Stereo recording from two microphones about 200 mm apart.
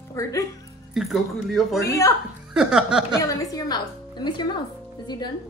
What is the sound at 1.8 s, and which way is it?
Speech, 15° left (ahead or behind).